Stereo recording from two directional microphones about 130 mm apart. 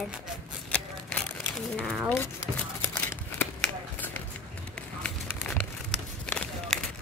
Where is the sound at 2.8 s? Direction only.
10° left (ahead or behind).